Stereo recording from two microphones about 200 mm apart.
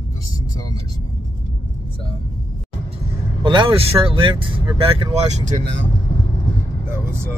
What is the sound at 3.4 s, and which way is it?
Speech, 25° right (ahead or behind).